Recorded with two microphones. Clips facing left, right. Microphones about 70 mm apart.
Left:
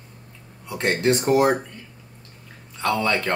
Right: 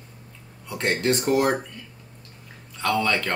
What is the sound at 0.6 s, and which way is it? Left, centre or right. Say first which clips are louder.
Speech: left 2 dB; left.